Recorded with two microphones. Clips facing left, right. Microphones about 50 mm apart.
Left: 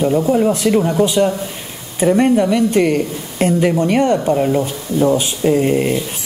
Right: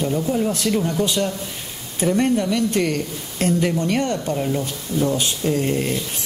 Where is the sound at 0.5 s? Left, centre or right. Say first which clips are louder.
Left 7 dB; centre.